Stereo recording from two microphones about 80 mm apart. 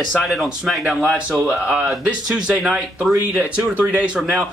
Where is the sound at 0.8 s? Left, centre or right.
Centre.